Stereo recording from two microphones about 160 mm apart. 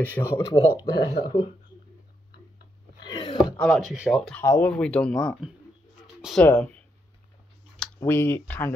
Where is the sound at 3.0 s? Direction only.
30° left (ahead or behind).